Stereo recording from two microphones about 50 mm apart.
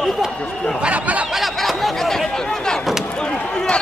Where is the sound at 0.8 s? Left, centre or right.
Right.